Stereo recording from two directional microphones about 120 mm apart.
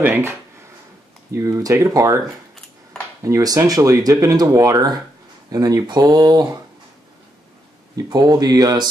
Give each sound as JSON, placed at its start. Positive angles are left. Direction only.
{"t": 0.0, "sound": "speech", "side_deg": -20}
{"t": 3.3, "sound": "speech", "side_deg": -30}
{"t": 7.9, "sound": "speech", "side_deg": -35}